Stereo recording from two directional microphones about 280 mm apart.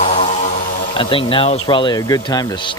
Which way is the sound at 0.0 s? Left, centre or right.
Left.